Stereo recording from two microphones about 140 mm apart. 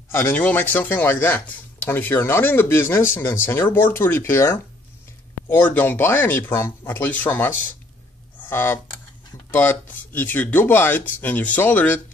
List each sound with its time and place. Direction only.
0.1 s speech: 15° left (ahead or behind)
8.4 s computer keyboard: 15° left (ahead or behind)
9.5 s speech: 10° left (ahead or behind)